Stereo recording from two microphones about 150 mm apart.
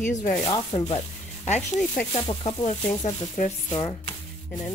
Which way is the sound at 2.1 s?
35° left (ahead or behind).